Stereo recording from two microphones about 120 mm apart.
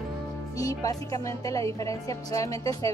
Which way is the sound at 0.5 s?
30° left (ahead or behind).